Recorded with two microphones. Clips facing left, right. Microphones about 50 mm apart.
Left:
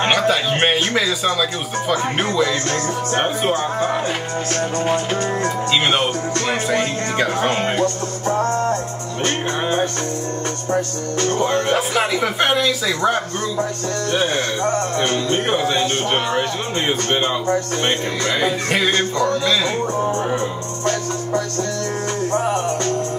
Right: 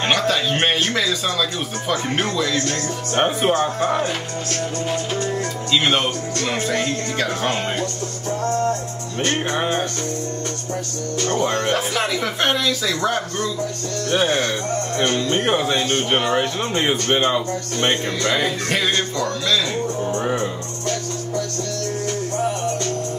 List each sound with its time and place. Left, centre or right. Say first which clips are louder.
0.0 s speech: left 2 dB; centre
3.2 s a man's voice: right 3 dB; centre
4.6 s music: left 4 dB; left
6.7 s speech: left 3 dB; centre
7.8 s music: left 6 dB; left
11.4 s speech: left 2 dB; centre
14.1 s a man's voice: right 2 dB; centre
18.9 s music: left 4 dB; left
22.3 s music: left 4 dB; left